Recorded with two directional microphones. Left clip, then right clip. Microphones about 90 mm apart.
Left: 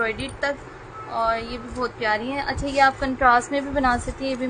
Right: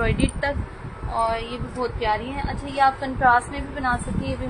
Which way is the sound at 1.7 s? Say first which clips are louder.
Even; 20° left (ahead or behind).